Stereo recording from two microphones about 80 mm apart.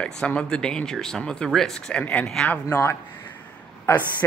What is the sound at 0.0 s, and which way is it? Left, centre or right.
Speech, centre.